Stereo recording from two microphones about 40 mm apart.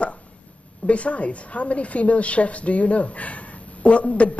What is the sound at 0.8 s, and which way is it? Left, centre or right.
A woman's voice, left.